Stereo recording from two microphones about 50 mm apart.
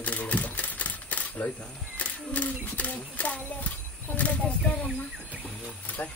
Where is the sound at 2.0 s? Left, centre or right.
Left.